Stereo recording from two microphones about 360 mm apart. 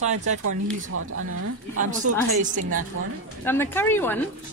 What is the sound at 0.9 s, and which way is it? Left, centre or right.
Speech, right.